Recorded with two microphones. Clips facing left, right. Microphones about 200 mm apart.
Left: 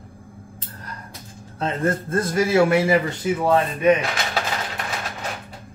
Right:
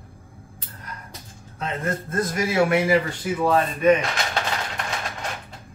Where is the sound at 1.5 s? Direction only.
30° left (ahead or behind).